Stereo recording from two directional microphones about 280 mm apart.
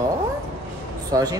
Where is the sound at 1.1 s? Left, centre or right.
Centre.